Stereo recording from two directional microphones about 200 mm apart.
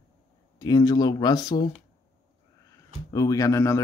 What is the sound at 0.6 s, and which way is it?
Speech, 20° left (ahead or behind).